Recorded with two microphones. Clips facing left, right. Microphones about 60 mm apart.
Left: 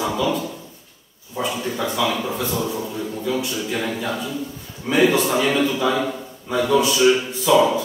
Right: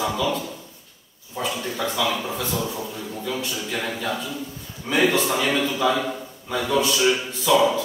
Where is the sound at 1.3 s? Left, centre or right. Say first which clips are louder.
Left 3 dB; centre.